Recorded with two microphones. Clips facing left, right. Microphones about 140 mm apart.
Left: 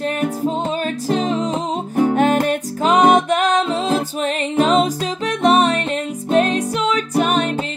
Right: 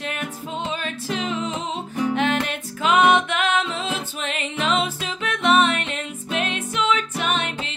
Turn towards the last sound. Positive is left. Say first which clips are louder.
# left 7 dB
turn(degrees=40)  # may be behind; listen again after turning